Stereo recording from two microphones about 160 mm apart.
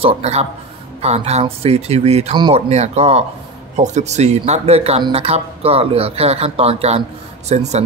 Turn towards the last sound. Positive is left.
turn(degrees=-45)  # may be behind; listen again after turning